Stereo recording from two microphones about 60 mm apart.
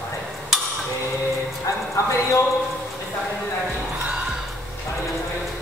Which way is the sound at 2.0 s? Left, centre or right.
Left.